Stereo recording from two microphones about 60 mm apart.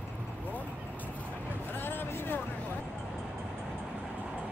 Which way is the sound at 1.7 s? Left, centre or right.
Left.